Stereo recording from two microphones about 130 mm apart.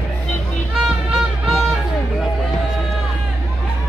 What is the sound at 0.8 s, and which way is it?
Music, 5° right (ahead or behind).